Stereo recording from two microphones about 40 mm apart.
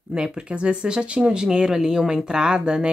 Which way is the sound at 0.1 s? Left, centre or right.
Right.